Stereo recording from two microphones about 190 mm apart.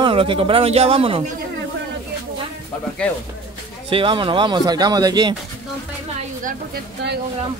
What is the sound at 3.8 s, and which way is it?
A man's voice, 25° right (ahead or behind).